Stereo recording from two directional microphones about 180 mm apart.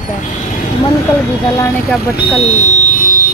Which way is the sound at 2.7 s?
45° left (ahead or behind).